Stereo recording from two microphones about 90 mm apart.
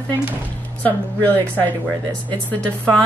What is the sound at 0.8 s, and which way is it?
Speech, 20° left (ahead or behind).